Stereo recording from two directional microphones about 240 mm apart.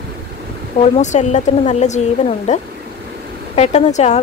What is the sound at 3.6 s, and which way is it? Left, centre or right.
Speech, left.